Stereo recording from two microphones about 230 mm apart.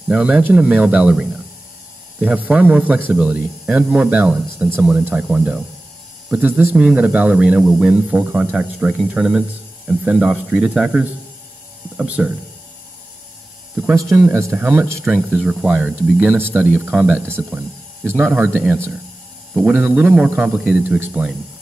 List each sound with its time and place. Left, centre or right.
0.1 s speech: centre
13.7 s speech: centre